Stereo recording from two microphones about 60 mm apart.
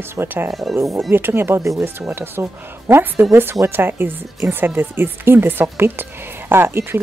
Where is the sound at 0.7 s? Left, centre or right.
Right.